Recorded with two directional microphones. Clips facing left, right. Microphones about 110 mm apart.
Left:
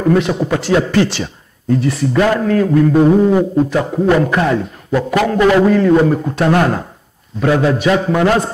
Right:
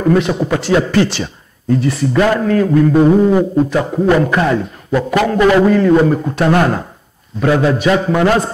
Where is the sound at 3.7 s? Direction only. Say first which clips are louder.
Right 1 dB; 20° right (ahead or behind).